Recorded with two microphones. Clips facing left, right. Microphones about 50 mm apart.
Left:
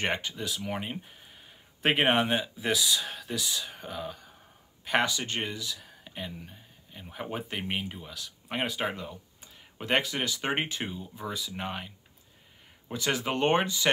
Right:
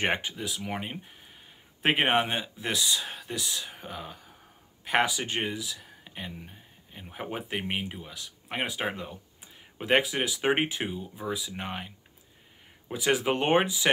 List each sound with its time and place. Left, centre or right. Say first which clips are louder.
0.0 s speech: right 2 dB; right
0.3 s speech: even; centre
5.7 s speech: left 1 dB; centre